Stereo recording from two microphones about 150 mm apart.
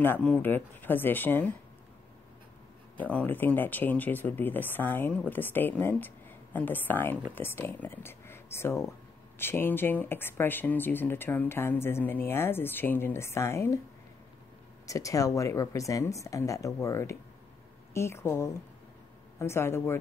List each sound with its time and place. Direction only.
0.0 s speech: 10° left (ahead or behind)
3.0 s speech: 10° left (ahead or behind)
14.9 s speech: 20° left (ahead or behind)